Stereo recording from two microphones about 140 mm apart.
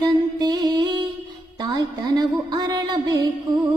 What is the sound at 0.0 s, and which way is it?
Music, 30° right (ahead or behind).